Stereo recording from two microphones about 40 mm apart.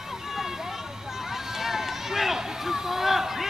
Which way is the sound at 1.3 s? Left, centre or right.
Centre.